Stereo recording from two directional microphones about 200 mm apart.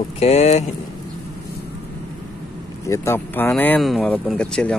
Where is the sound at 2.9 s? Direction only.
10° left (ahead or behind).